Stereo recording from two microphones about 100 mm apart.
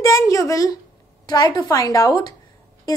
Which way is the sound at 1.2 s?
45° left (ahead or behind).